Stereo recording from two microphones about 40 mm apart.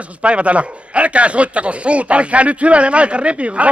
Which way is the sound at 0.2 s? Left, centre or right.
Right.